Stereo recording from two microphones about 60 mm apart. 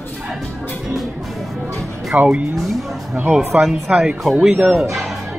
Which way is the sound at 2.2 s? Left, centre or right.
Right.